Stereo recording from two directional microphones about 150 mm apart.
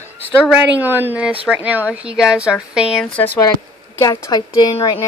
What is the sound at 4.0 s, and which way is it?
Speech, 20° left (ahead or behind).